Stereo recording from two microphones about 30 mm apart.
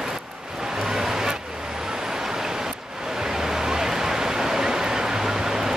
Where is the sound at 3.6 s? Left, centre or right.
Centre.